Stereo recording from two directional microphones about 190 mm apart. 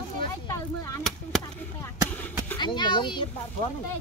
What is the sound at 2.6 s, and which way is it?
Speech, 25° left (ahead or behind).